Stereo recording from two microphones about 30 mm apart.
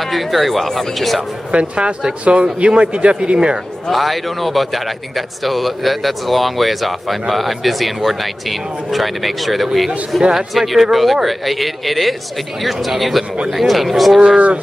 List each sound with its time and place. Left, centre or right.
0.0 s speech: centre
1.5 s speech: right
3.9 s speech: centre